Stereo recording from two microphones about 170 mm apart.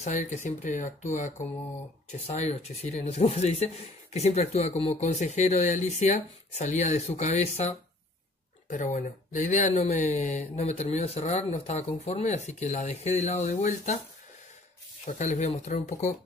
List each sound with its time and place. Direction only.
0.0 s speech: 40° left (ahead or behind)
15.0 s speech: 45° left (ahead or behind)